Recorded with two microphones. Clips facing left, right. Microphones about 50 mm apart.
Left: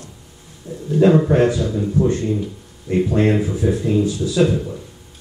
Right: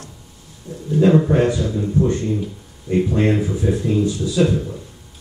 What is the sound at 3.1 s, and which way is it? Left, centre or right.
A man's voice, centre.